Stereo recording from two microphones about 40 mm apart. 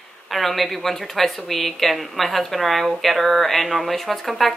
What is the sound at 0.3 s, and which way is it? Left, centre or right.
Speech, centre.